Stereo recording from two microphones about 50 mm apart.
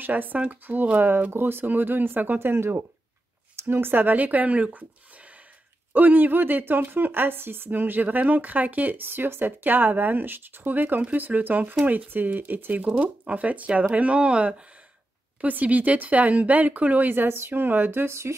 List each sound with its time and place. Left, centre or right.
0.0 s speech: right
5.9 s speech: right
12.9 s speech: right
17.1 s speech: right